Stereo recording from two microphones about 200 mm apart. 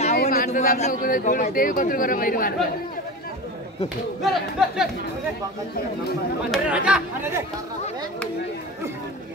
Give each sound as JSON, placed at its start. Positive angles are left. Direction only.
{"t": 0.2, "sound": "a man's voice", "side_deg": 45}
{"t": 4.2, "sound": "speech", "side_deg": 0}
{"t": 6.5, "sound": "speech", "side_deg": -5}